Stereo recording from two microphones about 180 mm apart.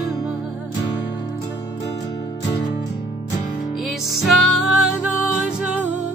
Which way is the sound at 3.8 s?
Centre (ahead or behind).